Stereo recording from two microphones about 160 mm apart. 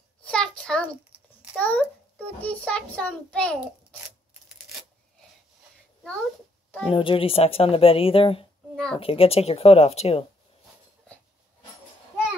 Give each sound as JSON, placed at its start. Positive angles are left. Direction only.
{"t": 0.2, "sound": "a sound", "side_deg": 5}
{"t": 1.6, "sound": "a child's voice", "side_deg": 10}
{"t": 6.9, "sound": "speech", "side_deg": 35}
{"t": 8.7, "sound": "a woman's voice", "side_deg": 5}
{"t": 9.0, "sound": "speech", "side_deg": 35}